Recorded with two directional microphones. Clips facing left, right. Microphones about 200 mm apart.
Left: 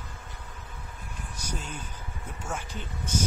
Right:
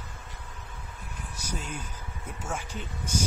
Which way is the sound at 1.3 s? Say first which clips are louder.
Right 1 dB; 10° right (ahead or behind).